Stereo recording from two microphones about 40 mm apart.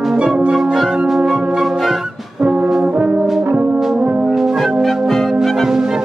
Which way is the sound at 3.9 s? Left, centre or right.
Right.